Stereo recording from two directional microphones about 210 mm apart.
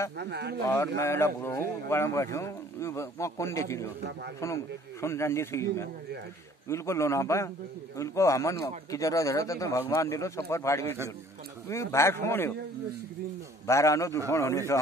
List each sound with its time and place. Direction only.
0.2 s speech: 50° right (ahead or behind)
0.6 s speech: 15° left (ahead or behind)
5.0 s speech: 15° left (ahead or behind)
13.7 s speech: 15° left (ahead or behind)